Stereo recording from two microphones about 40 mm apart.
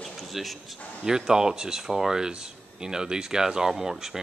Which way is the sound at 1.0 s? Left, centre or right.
Centre.